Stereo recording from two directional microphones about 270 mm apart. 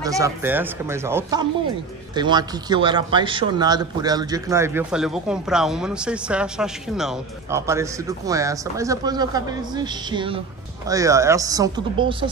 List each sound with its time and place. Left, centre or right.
0.0 s speech: centre